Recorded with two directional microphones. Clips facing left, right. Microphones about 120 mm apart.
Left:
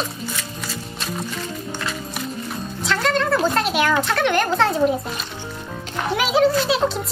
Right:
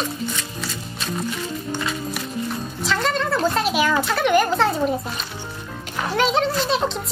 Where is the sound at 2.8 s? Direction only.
Centre (ahead or behind).